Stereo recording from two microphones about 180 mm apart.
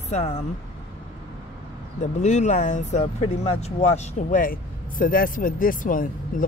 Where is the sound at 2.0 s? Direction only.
40° left (ahead or behind).